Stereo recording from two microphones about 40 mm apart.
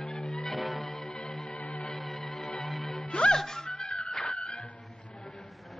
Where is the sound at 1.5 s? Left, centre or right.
Left.